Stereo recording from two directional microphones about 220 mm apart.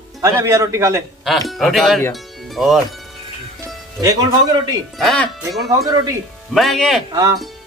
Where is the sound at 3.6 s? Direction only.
15° right (ahead or behind).